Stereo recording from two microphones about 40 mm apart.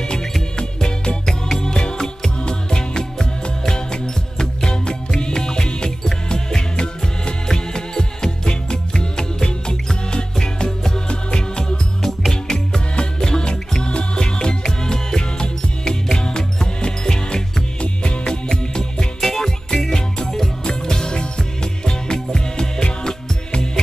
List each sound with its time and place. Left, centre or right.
0.0 s music: centre